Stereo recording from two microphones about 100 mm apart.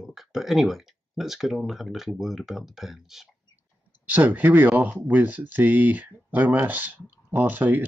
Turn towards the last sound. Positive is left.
turn(degrees=-20)  # may be behind; listen again after turning